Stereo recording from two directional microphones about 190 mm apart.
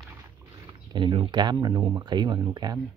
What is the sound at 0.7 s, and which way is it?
Speech, 25° right (ahead or behind).